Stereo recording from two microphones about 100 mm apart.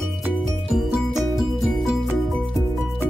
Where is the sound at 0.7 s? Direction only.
5° right (ahead or behind).